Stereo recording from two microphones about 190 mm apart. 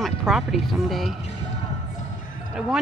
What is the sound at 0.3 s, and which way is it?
Speech, centre (ahead or behind).